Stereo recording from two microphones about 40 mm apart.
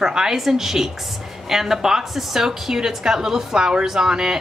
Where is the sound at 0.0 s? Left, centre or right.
Centre.